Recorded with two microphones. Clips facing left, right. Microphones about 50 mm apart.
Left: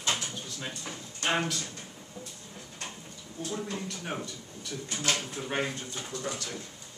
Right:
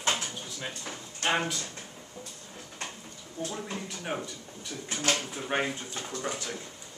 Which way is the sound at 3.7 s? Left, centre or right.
Centre.